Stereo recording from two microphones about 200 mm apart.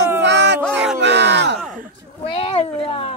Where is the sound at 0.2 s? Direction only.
60° right (ahead or behind).